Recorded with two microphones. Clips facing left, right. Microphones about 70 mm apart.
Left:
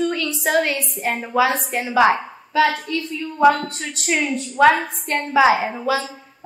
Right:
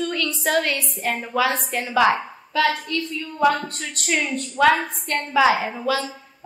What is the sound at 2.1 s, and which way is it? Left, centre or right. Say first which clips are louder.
A woman's voice: left 2 dB; centre.